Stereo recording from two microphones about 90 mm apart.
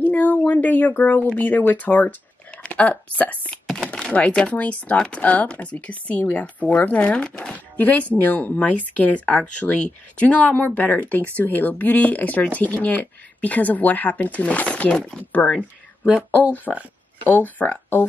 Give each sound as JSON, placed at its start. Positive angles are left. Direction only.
{"t": 0.0, "sound": "a sound", "side_deg": 20}
{"t": 0.4, "sound": "speech", "side_deg": 15}
{"t": 3.6, "sound": "speech", "side_deg": 5}
{"t": 16.7, "sound": "speech", "side_deg": 5}
{"t": 17.6, "sound": "speech", "side_deg": 20}